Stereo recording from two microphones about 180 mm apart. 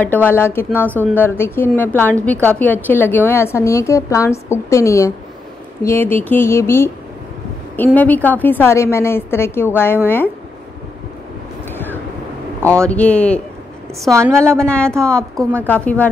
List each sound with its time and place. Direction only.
0.0 s a woman's voice: 10° left (ahead or behind)
12.6 s a woman's voice: 5° left (ahead or behind)
14.1 s a woman's voice: 15° right (ahead or behind)
14.7 s a woman's voice: 5° left (ahead or behind)